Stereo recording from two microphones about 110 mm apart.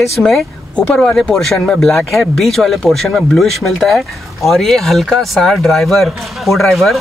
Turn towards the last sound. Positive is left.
turn(degrees=0)  # may be behind; listen again after turning